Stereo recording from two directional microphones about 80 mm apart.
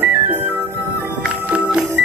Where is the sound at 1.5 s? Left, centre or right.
Centre.